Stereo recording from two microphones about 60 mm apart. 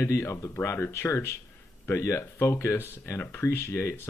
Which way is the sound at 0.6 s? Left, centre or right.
Left.